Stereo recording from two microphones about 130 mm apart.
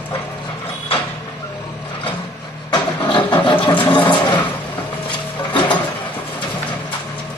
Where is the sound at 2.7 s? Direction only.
35° left (ahead or behind).